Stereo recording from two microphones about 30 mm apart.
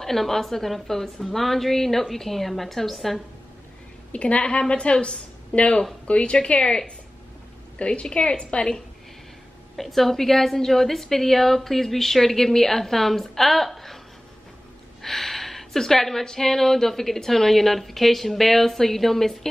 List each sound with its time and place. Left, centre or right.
0.0 s a woman's voice: centre
4.1 s a woman's voice: left
6.3 s a woman's voice: left
7.8 s a woman's voice: left
8.2 s a woman's voice: left
9.8 s a woman's voice: centre
15.0 s a sound: centre
16.3 s a woman's voice: centre